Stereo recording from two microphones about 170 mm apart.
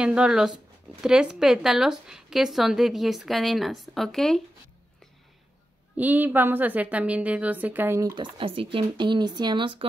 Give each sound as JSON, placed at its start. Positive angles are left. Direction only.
{"t": 0.0, "sound": "a woman's voice", "side_deg": -5}
{"t": 5.9, "sound": "a woman's voice", "side_deg": -10}
{"t": 8.1, "sound": "speech", "side_deg": -30}